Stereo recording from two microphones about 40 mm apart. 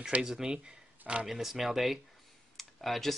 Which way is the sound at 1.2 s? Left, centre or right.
Centre.